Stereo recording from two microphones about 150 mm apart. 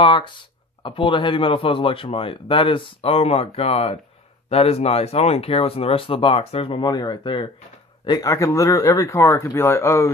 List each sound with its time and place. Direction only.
0.0 s speech: 35° left (ahead or behind)